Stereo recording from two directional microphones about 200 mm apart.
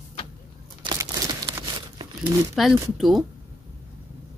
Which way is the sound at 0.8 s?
20° right (ahead or behind).